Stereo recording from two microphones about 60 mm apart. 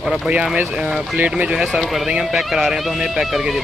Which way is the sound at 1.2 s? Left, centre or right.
Right.